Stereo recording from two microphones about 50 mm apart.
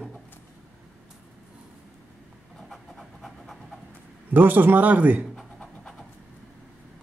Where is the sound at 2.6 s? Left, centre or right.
Centre.